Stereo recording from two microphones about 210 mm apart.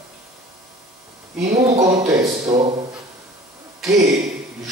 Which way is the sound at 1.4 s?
35° right (ahead or behind).